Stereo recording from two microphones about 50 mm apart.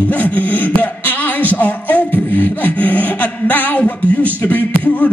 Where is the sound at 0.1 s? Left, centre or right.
Left.